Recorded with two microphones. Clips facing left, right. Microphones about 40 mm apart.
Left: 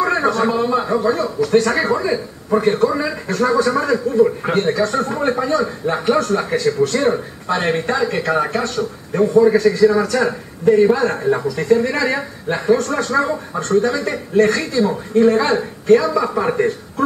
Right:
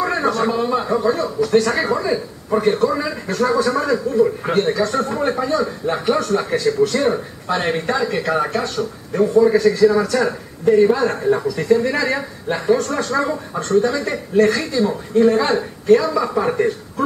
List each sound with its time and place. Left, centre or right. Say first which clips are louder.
0.0 s a man's voice: left 2 dB; centre